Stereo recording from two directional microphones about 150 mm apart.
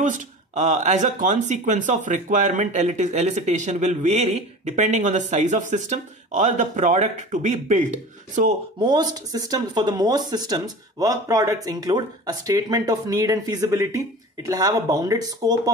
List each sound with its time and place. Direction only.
0.0 s a man's voice: 55° right (ahead or behind)
8.7 s speech: 30° right (ahead or behind)